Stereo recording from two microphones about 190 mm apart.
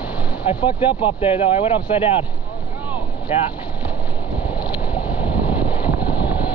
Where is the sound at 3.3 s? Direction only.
30° left (ahead or behind).